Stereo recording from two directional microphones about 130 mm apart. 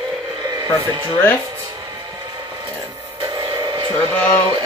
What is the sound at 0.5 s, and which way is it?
Speech, 35° right (ahead or behind).